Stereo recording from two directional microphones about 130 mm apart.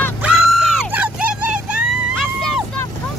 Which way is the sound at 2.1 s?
5° left (ahead or behind).